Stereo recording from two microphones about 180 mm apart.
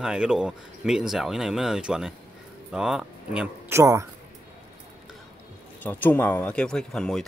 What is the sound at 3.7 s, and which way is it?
Speech, 15° right (ahead or behind).